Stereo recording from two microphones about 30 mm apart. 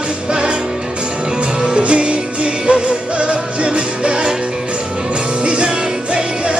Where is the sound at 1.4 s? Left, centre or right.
Right.